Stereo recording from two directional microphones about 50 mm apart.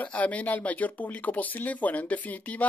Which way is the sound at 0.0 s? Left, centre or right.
Left.